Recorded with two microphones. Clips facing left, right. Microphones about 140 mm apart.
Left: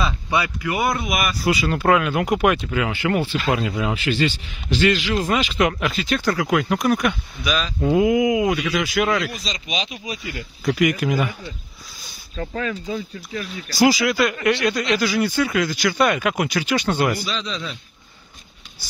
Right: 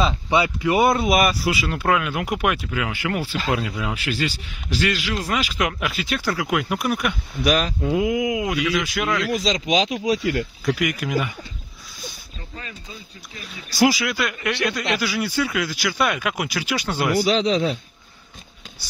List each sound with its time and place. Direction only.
0.0 s speech: 25° right (ahead or behind)
1.4 s speech: centre (ahead or behind)
7.4 s a man's voice: 60° right (ahead or behind)
7.8 s speech: centre (ahead or behind)
9.3 s speech: 90° right
10.6 s speech: centre (ahead or behind)
12.4 s speech: 90° left
13.7 s speech: centre (ahead or behind)
17.2 s a man's voice: 65° right (ahead or behind)